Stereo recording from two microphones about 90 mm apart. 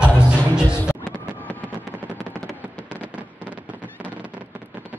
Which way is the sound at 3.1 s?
15° right (ahead or behind).